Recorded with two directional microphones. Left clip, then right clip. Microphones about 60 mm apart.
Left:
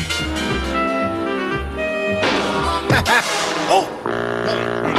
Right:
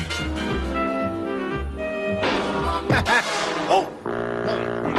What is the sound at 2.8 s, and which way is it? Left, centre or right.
Music, left.